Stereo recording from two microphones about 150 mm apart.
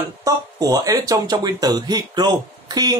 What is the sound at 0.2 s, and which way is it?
Speech, 25° right (ahead or behind).